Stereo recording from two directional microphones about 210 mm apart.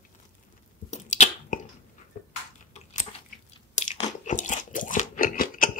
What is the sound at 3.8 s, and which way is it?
Crunch, 35° left (ahead or behind).